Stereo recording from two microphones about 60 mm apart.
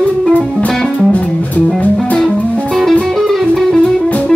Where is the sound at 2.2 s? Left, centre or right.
Centre.